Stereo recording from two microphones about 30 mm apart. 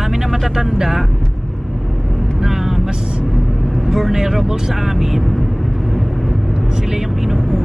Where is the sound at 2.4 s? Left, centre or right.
Centre.